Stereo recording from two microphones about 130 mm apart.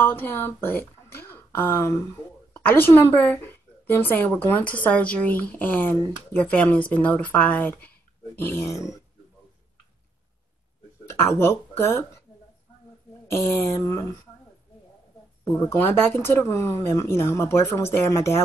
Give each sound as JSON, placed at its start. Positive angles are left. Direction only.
{"t": 0.0, "sound": "a woman's voice", "side_deg": 15}
{"t": 11.1, "sound": "speech", "side_deg": 20}
{"t": 13.3, "sound": "speech", "side_deg": 25}
{"t": 15.6, "sound": "speech", "side_deg": 20}